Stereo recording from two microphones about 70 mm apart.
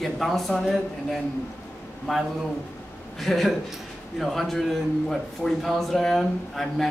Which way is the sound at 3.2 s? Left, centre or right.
Centre.